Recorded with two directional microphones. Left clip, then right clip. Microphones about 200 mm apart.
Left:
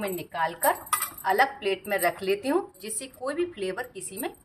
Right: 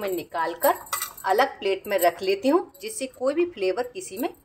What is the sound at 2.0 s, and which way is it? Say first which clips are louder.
A woman's voice: right 6 dB; 30° right (ahead or behind).